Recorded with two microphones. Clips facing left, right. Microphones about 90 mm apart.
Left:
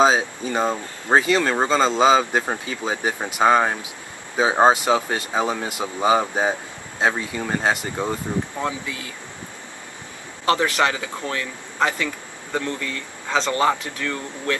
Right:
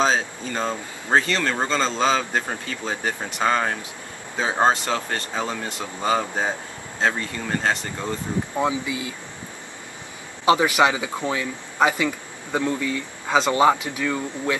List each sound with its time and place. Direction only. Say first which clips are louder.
0.0 s speech: left 4 dB; 10° left (ahead or behind)
8.5 s speech: right 4 dB; 15° right (ahead or behind)
10.4 s speech: right 2 dB; 10° right (ahead or behind)